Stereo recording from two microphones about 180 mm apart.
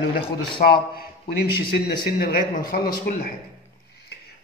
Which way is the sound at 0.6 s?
55° left (ahead or behind).